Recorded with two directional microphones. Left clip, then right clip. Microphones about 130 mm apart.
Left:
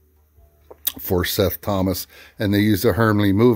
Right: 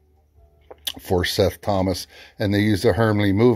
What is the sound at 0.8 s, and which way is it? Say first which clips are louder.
Speech: even; 45° left (ahead or behind).